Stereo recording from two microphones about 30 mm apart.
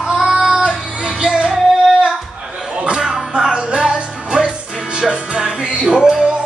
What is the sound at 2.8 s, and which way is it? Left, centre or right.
Music, right.